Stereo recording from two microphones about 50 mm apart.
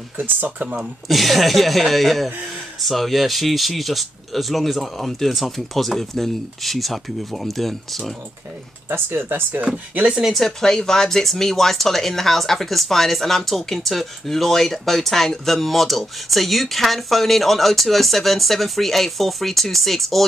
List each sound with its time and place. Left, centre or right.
0.2 s speech: right
0.7 s speech: centre
8.8 s speech: right
9.5 s speech: right
10.2 s speech: centre